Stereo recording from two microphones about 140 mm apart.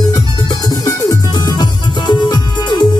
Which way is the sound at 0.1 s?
30° left (ahead or behind).